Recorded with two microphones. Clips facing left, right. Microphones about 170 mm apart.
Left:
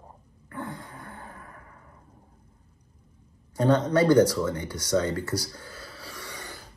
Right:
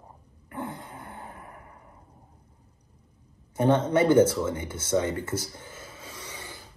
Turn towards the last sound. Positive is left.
turn(degrees=-20)  # may be behind; listen again after turning